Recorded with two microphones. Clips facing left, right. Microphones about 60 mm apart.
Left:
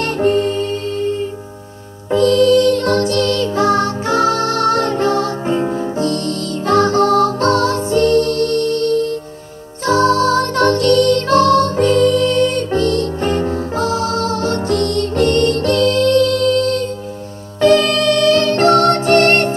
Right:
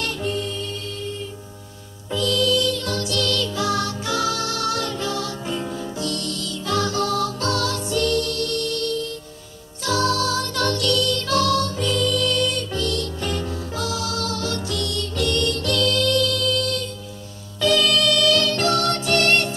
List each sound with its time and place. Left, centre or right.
0.0 s music: left